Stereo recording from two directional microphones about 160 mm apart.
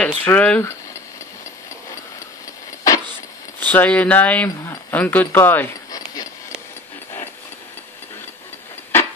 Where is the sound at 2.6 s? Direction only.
20° left (ahead or behind).